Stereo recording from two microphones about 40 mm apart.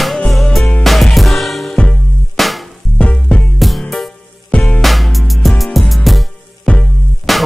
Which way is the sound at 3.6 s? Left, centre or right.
Centre.